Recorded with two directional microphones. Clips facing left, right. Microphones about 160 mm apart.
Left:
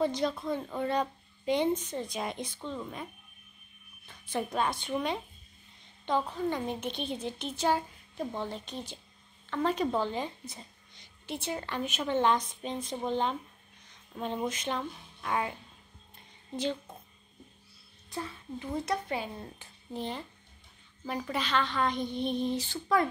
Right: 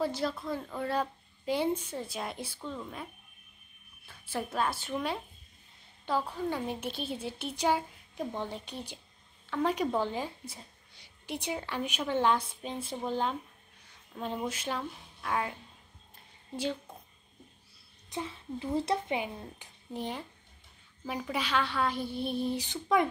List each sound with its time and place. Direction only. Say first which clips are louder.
0.0 s a woman's voice: left 2 dB; 5° right (ahead or behind)
18.1 s a woman's voice: right 1 dB; 20° right (ahead or behind)
21.0 s a woman's voice: left 1 dB; centre (ahead or behind)
21.3 s a woman's voice: even; 10° right (ahead or behind)